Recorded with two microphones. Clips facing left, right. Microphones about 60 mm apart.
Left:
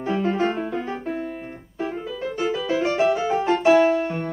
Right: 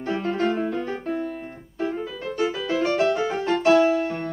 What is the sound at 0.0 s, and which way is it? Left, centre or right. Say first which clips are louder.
Music: left 2 dB; centre.